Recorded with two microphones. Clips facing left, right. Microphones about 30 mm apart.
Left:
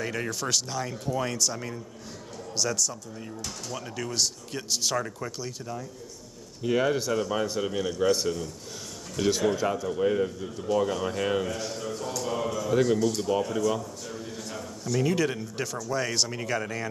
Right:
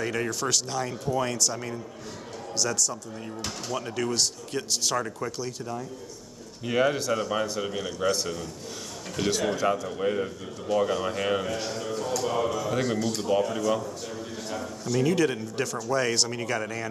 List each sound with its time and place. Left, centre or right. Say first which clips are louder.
0.0 s speech: right 2 dB; centre
3.3 s speech: right 4 dB; right
3.7 s speech: right 4 dB; centre
9.2 s speech: left 2 dB; right
9.8 s speech: left 2 dB; centre
14.5 s a sound: right 2 dB; centre
15.0 s speech: right 4 dB; centre